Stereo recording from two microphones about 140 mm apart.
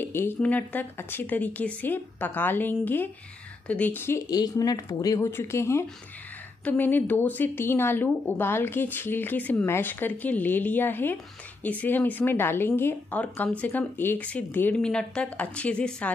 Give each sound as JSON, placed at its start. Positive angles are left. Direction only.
{"t": 0.0, "sound": "speech", "side_deg": 15}
{"t": 4.3, "sound": "speech", "side_deg": 25}